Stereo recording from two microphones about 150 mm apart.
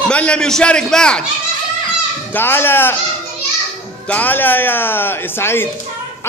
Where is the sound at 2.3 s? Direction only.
15° left (ahead or behind).